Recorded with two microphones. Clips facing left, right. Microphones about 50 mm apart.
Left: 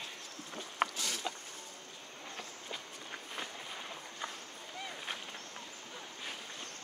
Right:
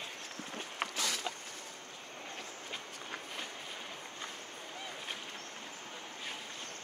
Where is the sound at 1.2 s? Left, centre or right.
Centre.